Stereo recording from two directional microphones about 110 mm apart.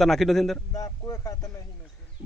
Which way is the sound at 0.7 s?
30° left (ahead or behind).